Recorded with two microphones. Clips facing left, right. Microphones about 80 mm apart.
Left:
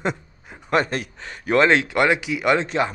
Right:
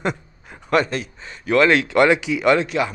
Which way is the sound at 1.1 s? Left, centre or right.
Left.